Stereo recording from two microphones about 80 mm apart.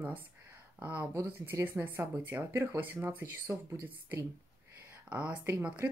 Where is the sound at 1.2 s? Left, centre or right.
Right.